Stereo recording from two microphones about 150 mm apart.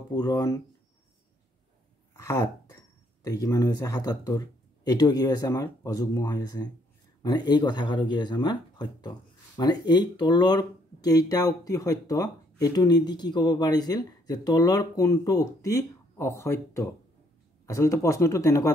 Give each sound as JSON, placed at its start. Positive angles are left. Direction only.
{"t": 0.1, "sound": "speech", "side_deg": 25}
{"t": 2.1, "sound": "speech", "side_deg": 20}